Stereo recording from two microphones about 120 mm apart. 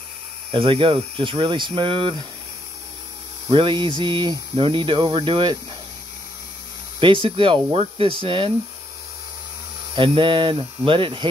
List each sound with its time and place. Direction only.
0.5 s speech: 50° right (ahead or behind)
3.4 s speech: 40° right (ahead or behind)
7.0 s speech: 45° right (ahead or behind)
9.9 s speech: 45° right (ahead or behind)